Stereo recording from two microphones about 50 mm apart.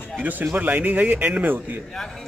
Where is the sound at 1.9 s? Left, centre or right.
Centre.